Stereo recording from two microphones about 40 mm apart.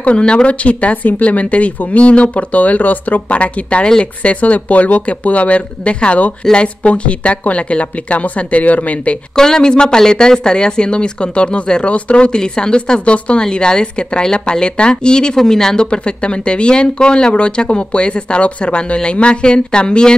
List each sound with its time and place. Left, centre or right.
0.2 s speech: left
9.3 s speech: centre